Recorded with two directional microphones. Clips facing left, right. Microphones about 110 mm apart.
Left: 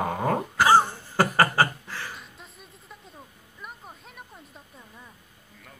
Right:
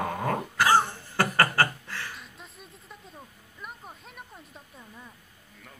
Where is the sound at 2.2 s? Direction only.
Centre (ahead or behind).